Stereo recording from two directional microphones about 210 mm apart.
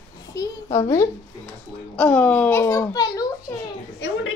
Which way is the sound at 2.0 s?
5° left (ahead or behind).